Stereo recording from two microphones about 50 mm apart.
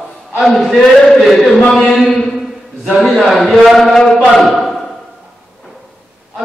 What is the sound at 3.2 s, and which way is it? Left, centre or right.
Speech, centre.